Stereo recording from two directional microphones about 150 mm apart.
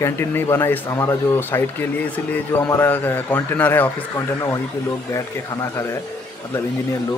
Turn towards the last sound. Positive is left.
turn(degrees=20)  # may be behind; listen again after turning